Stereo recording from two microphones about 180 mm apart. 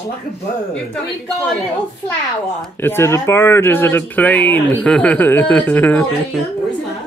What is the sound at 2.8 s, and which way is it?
Speech, 15° left (ahead or behind).